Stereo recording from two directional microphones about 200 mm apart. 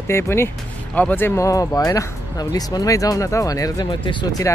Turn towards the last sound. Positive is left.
turn(degrees=20)  # may be behind; listen again after turning